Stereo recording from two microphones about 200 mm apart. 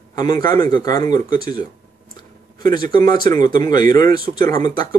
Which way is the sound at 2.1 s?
20° left (ahead or behind).